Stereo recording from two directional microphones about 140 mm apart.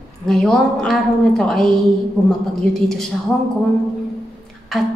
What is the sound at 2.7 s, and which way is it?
Speech, 5° left (ahead or behind).